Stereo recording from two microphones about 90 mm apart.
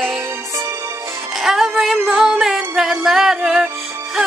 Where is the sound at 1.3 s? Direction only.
5° right (ahead or behind).